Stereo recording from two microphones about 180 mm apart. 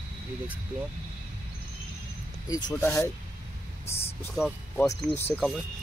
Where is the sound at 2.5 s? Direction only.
20° left (ahead or behind).